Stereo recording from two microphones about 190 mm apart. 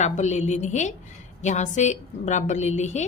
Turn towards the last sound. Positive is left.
turn(degrees=40)  # may be behind; listen again after turning